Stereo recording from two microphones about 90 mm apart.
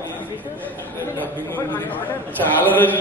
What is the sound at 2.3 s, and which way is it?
Speech, 20° left (ahead or behind).